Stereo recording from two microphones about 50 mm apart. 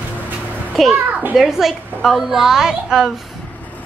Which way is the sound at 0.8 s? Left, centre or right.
Centre.